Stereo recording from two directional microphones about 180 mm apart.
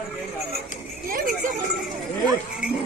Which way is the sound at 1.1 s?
50° right (ahead or behind).